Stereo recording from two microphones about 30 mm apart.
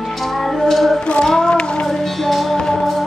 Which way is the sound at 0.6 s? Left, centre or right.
Centre.